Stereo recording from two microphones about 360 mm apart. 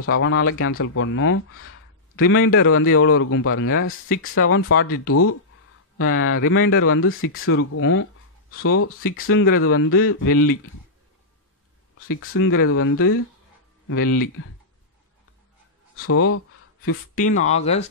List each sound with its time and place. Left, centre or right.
0.0 s speech: left
12.1 s speech: left
16.1 s speech: left
17.5 s speech: centre